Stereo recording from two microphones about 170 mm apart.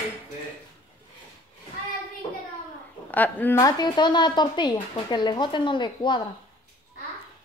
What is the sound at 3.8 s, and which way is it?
Speech, 25° left (ahead or behind).